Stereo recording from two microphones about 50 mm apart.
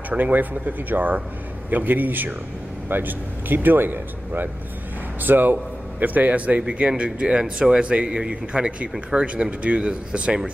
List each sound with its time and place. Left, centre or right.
0.2 s speech: right
5.2 s speech: right